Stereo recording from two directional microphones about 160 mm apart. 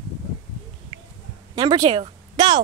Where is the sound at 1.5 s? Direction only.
30° right (ahead or behind).